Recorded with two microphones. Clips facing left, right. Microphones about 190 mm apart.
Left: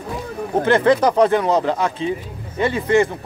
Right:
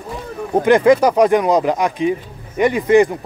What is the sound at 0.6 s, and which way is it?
Speech, 15° right (ahead or behind).